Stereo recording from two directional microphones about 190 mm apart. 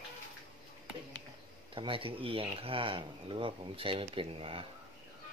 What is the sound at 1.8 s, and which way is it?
Speech, 30° right (ahead or behind).